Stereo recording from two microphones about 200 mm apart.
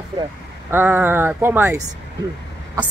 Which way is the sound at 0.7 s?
10° right (ahead or behind).